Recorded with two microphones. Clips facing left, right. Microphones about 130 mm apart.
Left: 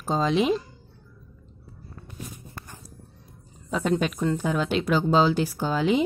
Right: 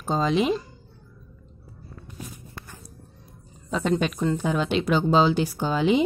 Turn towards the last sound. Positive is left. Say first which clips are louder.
# right 1 dB
turn(degrees=-15)  # may be behind; listen again after turning